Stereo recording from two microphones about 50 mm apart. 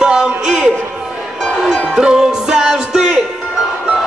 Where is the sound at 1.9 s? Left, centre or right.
Centre.